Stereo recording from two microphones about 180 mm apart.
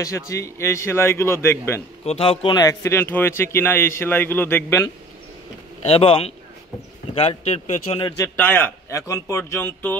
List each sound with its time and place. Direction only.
0.0 s a man's voice: 15° left (ahead or behind)
2.0 s a man's voice: 30° left (ahead or behind); by 4.9 s 15° left (ahead or behind)
5.9 s speech: 30° left (ahead or behind)
8.4 s a man's voice: 10° left (ahead or behind)